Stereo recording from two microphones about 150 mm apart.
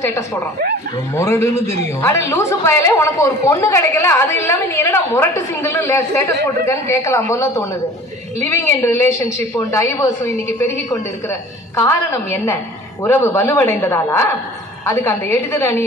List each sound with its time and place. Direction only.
1.1 s a woman's voice: 15° left (ahead or behind)